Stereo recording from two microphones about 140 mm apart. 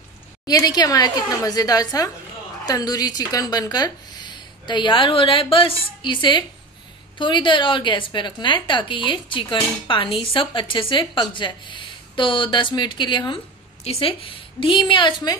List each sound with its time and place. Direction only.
0.5 s a woman's voice: 25° left (ahead or behind)